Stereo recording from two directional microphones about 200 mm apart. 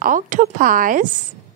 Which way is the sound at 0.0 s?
40° right (ahead or behind).